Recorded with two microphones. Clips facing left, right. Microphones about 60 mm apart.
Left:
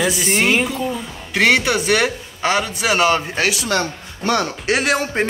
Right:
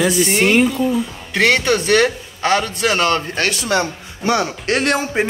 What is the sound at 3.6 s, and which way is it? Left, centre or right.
Speech, centre.